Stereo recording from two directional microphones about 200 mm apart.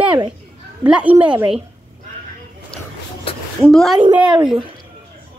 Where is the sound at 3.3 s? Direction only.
30° left (ahead or behind).